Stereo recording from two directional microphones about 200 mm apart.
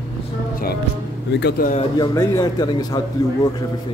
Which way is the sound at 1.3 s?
60° left (ahead or behind).